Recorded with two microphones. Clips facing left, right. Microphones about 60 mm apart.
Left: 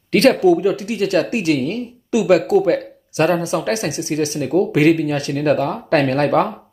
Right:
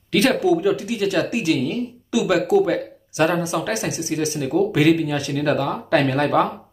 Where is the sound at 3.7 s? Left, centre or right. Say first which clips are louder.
Left 3 dB; centre.